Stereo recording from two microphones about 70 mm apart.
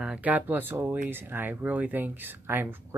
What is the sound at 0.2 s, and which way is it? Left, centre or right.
Speech, right.